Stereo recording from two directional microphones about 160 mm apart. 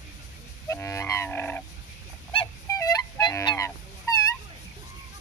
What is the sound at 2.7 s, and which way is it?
Goose, 20° left (ahead or behind).